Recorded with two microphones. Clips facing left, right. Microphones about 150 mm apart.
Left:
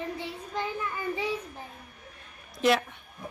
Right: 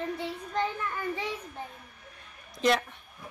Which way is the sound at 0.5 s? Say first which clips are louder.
Right 1 dB; 5° left (ahead or behind).